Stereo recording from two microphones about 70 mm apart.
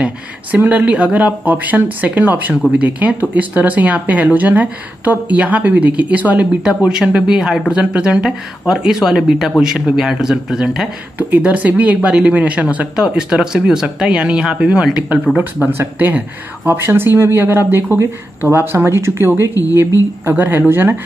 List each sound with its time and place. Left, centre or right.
0.6 s speech: right; by 7.7 s centre
7.7 s speech: centre
11.1 s speech: right
15.6 s speech: right